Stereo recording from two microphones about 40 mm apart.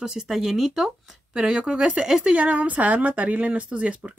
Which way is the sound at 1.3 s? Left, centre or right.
Right.